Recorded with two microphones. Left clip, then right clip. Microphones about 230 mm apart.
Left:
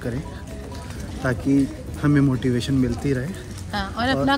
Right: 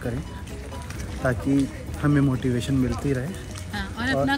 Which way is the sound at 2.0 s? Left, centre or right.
Centre.